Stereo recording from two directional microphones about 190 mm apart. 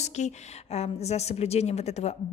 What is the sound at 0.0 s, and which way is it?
A woman's voice, 35° left (ahead or behind).